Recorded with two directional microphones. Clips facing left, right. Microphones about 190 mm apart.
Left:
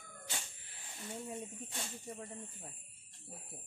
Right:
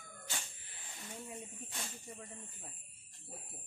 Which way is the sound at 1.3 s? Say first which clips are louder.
Left 4 dB; 25° left (ahead or behind).